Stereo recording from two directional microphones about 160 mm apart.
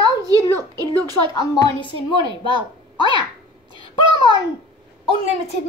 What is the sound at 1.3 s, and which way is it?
Speech, 25° left (ahead or behind).